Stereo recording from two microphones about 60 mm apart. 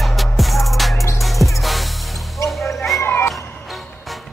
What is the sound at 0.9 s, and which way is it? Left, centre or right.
Music, left.